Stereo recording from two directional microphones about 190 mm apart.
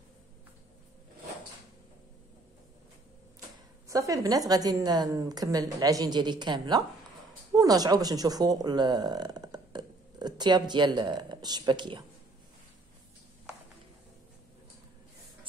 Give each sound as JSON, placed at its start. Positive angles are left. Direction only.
{"t": 3.9, "sound": "a woman's voice", "side_deg": -15}